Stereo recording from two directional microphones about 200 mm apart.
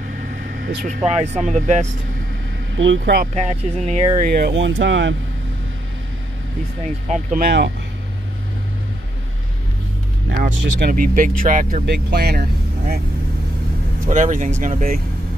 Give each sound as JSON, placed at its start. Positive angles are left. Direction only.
{"t": 0.1, "sound": "vehicle", "side_deg": -55}
{"t": 1.0, "sound": "speech", "side_deg": -30}
{"t": 2.7, "sound": "speech", "side_deg": -65}
{"t": 3.3, "sound": "speech", "side_deg": -35}
{"t": 4.2, "sound": "speech", "side_deg": -50}
{"t": 7.1, "sound": "speech", "side_deg": -50}
{"t": 10.4, "sound": "speech", "side_deg": -45}
{"t": 14.0, "sound": "speech", "side_deg": -40}